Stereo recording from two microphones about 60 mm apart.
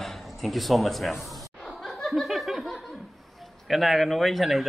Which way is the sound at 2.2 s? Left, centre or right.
Centre.